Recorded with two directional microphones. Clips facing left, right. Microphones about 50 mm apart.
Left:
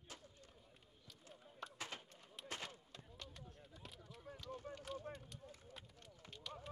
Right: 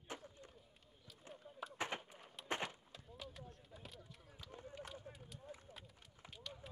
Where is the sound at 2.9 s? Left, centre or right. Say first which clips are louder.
Right 3 dB; centre.